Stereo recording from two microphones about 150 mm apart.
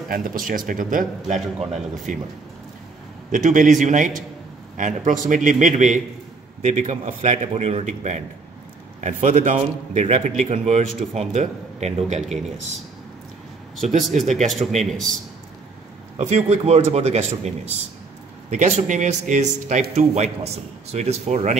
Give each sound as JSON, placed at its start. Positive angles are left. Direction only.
{"t": 0.1, "sound": "speech", "side_deg": -65}
{"t": 3.3, "sound": "speech", "side_deg": -60}
{"t": 13.8, "sound": "speech", "side_deg": -50}
{"t": 14.3, "sound": "speech", "side_deg": 0}
{"t": 16.2, "sound": "speech", "side_deg": -45}